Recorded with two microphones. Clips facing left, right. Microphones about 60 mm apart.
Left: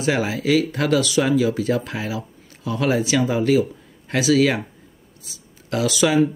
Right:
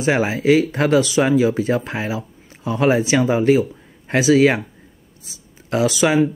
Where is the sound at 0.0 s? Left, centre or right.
Right.